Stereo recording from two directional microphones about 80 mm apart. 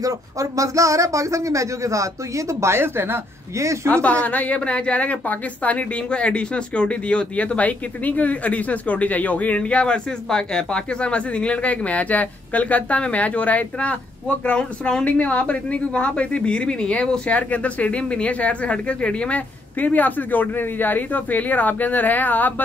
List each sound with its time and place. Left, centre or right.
0.0 s speech: right
3.9 s a woman's voice: centre